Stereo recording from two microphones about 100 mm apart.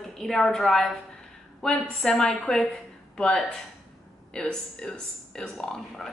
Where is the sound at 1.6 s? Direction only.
5° left (ahead or behind).